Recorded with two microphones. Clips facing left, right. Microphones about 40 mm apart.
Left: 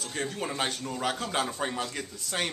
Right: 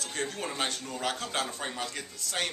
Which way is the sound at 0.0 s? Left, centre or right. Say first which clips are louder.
Left 1 dB; centre.